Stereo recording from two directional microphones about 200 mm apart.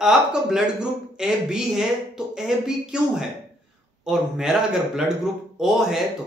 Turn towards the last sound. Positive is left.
turn(degrees=0)  # may be behind; listen again after turning